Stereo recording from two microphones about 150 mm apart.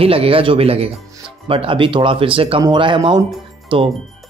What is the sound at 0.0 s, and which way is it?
Speech, 40° right (ahead or behind).